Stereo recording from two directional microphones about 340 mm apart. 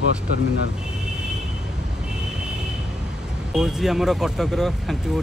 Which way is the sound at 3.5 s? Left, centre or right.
Centre.